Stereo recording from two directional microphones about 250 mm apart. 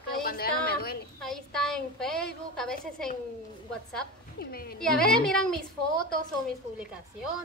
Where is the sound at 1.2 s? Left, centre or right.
Centre.